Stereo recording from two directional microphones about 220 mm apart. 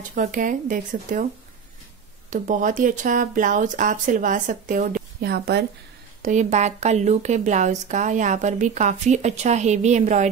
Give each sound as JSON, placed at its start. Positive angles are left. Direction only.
{"t": 0.1, "sound": "a woman's voice", "side_deg": -35}
{"t": 2.3, "sound": "a woman's voice", "side_deg": -35}
{"t": 6.2, "sound": "a woman's voice", "side_deg": -35}